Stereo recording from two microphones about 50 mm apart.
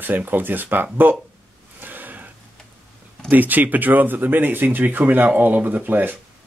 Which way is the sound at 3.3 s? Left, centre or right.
Right.